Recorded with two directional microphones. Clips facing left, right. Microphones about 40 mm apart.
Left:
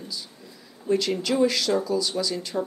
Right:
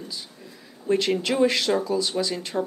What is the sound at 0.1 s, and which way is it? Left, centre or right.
Speech, right.